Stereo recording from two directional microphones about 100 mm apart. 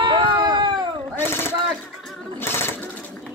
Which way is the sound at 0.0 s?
50° right (ahead or behind).